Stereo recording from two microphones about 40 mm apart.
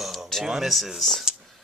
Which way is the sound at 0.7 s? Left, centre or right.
Centre.